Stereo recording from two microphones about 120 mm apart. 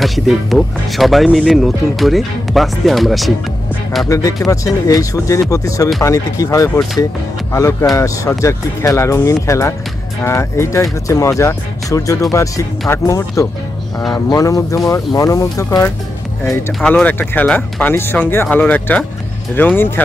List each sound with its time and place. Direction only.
0.0 s speech: centre (ahead or behind)
4.1 s speech: 30° left (ahead or behind)
7.9 s speech: 25° left (ahead or behind)
14.3 s speech: 30° left (ahead or behind)